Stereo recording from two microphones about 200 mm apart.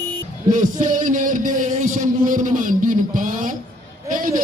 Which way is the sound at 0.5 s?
40° right (ahead or behind).